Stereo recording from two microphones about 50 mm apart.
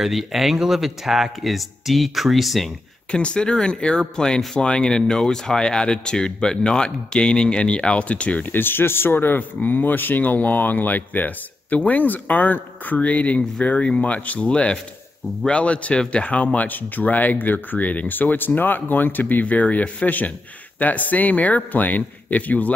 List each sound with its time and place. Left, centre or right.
0.0 s speech: centre
3.1 s speech: left
8.5 s speech: left
16.5 s speech: left